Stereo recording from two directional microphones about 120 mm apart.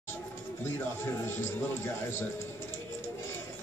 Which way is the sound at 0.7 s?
20° left (ahead or behind).